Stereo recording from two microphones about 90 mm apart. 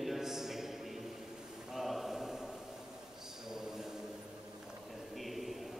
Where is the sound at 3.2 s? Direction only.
5° right (ahead or behind).